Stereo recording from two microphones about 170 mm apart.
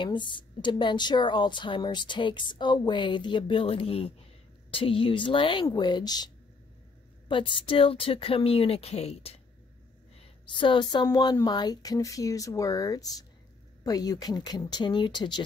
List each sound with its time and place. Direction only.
0.0 s a woman's voice: 30° left (ahead or behind)